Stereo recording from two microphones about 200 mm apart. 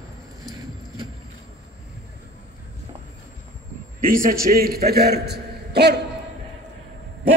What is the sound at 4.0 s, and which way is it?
A man's voice, 45° right (ahead or behind).